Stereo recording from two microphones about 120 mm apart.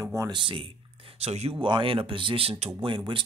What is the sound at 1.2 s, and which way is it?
Speech, 60° right (ahead or behind).